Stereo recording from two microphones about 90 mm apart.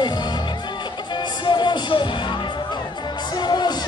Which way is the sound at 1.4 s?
55° left (ahead or behind).